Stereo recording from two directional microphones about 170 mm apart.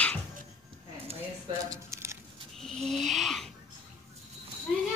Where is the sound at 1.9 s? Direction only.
15° right (ahead or behind).